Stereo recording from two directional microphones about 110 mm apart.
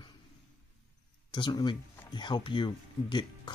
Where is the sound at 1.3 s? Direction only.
45° left (ahead or behind).